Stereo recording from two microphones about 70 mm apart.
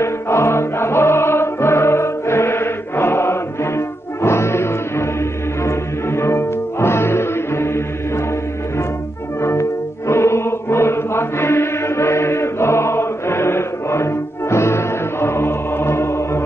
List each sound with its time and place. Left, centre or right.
0.0 s music: left
9.4 s music: left